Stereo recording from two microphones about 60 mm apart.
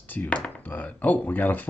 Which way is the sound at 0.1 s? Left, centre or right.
Left.